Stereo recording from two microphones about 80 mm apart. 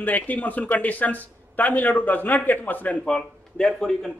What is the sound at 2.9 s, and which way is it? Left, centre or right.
Speech, centre.